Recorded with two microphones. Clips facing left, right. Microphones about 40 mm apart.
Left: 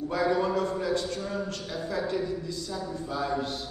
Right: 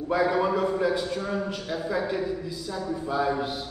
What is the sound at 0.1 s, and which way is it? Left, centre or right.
A man's voice, centre.